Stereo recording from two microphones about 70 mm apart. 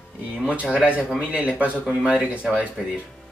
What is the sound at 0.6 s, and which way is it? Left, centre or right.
Speech, centre.